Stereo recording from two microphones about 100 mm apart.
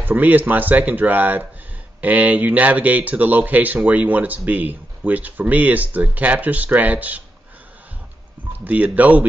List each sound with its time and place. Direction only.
0.0 s speech: 20° right (ahead or behind)
8.5 s speech: 15° right (ahead or behind)